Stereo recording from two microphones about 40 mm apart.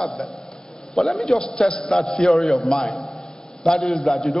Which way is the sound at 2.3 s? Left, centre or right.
Centre.